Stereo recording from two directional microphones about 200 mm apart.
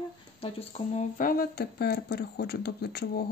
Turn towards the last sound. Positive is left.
turn(degrees=55)  # may be behind; listen again after turning